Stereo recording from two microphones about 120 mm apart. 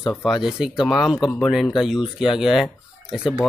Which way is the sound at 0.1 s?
Centre (ahead or behind).